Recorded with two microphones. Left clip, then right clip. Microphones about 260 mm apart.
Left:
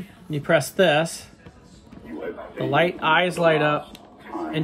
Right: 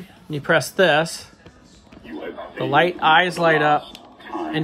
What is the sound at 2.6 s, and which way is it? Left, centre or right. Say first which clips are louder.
Speech: right 4 dB; right.